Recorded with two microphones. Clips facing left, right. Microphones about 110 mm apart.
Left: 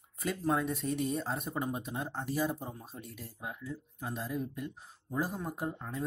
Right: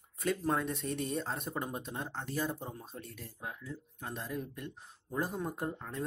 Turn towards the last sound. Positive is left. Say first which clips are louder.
# left 1 dB
turn(degrees=5)  # may be behind; listen again after turning